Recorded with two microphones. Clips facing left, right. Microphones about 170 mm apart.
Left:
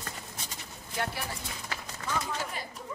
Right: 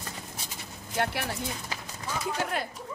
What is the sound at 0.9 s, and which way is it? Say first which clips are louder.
Speech: right 5 dB; 65° right (ahead or behind).